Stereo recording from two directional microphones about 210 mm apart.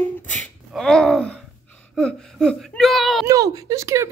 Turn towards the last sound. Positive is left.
turn(degrees=-15)  # may be behind; listen again after turning